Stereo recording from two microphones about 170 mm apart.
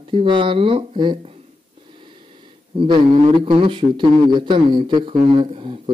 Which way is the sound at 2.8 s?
30° right (ahead or behind).